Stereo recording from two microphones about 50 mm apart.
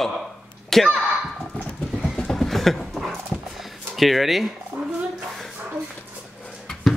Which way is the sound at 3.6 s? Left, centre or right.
Centre.